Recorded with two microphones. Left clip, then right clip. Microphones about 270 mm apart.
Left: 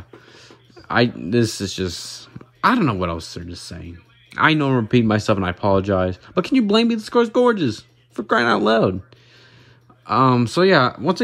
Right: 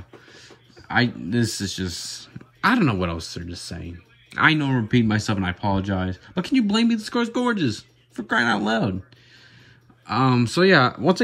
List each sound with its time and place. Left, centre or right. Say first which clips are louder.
0.3 s speech: left 1 dB; centre
10.0 s speech: left 5 dB; centre